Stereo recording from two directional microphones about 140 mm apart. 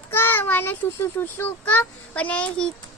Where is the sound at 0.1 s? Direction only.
15° left (ahead or behind).